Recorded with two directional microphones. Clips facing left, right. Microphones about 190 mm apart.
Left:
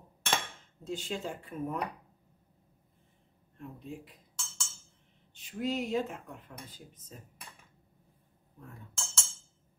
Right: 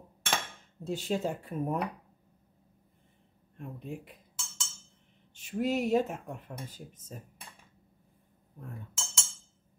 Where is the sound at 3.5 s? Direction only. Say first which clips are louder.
Right 3 dB; 55° right (ahead or behind).